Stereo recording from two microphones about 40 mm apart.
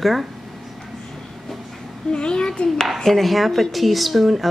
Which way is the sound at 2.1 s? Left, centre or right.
Left.